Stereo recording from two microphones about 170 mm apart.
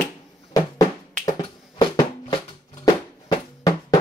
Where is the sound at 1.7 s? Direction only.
20° left (ahead or behind).